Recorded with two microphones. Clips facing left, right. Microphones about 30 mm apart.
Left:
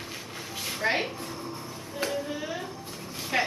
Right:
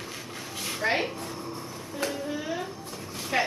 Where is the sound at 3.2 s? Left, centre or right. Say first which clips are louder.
Right 1 dB; centre.